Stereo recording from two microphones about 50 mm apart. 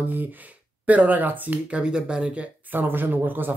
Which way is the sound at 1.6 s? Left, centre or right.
Right.